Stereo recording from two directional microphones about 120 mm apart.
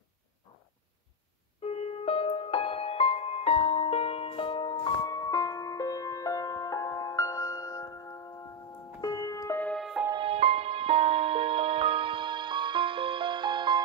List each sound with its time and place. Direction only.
1.6 s music: 55° left (ahead or behind)
5.0 s music: 30° left (ahead or behind)
9.8 s music: centre (ahead or behind)
10.1 s music: 55° right (ahead or behind); by 13.8 s 40° right (ahead or behind)